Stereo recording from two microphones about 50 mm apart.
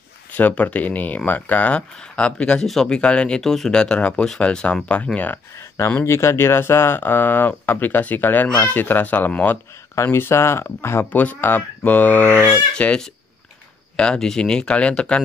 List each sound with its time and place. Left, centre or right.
0.3 s speech: left
1.8 s speech: left
2.6 s speech: centre
2.9 s speech: left
3.4 s speech: centre
3.8 s speech: centre
6.0 s speech: left
10.0 s speech: left
11.1 s speech: left
12.7 s speech: centre